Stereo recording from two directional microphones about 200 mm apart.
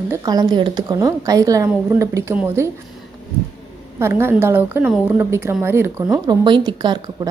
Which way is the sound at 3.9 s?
15° right (ahead or behind).